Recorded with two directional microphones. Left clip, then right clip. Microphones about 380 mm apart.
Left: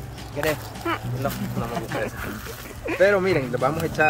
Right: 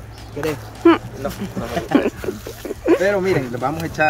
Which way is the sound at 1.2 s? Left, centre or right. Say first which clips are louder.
Left 1 dB; left.